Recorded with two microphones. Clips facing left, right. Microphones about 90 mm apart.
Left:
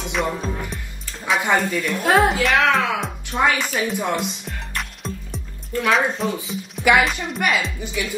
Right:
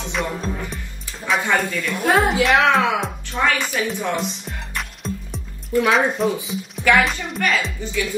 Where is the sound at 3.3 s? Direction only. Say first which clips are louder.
Left 2 dB; 15° left (ahead or behind).